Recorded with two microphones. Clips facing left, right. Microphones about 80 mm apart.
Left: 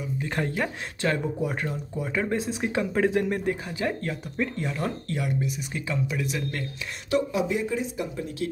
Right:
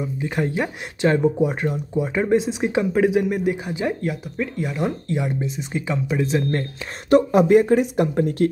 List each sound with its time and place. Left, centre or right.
0.2 s speech: centre
7.1 s speech: right